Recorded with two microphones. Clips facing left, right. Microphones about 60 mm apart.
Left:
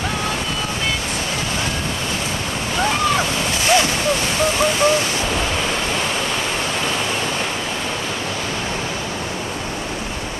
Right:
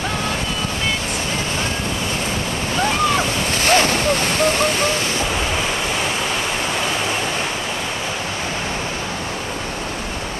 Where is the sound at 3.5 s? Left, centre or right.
Right.